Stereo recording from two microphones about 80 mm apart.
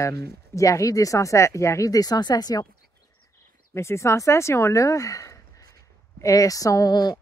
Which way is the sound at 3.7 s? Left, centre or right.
Left.